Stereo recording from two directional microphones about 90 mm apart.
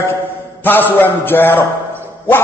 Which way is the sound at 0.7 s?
20° left (ahead or behind).